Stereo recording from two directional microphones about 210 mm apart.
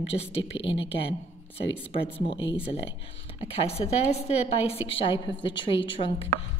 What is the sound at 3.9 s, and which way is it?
Speech, 30° left (ahead or behind).